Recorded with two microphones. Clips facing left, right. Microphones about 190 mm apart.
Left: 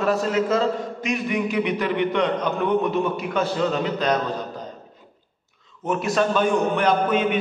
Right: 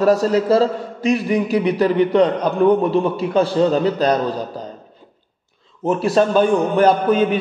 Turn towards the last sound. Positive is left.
turn(degrees=-35)  # may be behind; listen again after turning